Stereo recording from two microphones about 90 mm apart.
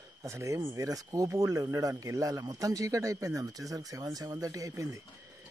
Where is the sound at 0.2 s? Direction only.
35° right (ahead or behind).